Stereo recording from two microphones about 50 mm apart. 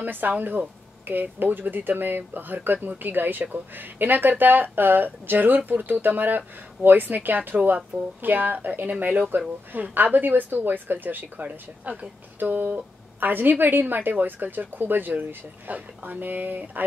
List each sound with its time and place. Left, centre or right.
0.0 s speech: right